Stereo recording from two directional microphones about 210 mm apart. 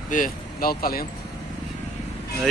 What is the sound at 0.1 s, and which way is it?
Speech, 40° left (ahead or behind).